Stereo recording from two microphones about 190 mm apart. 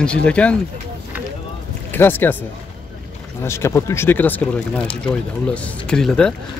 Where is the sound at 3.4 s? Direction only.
15° left (ahead or behind).